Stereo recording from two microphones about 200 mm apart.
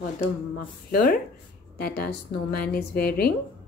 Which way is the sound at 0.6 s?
45° left (ahead or behind).